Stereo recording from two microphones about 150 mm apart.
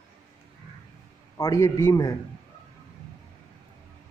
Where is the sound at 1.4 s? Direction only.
20° left (ahead or behind).